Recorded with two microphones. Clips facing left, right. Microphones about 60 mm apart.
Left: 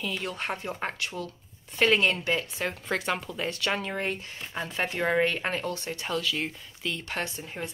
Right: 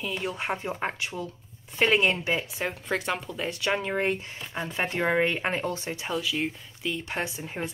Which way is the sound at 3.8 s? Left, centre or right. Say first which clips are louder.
Right 4 dB; right.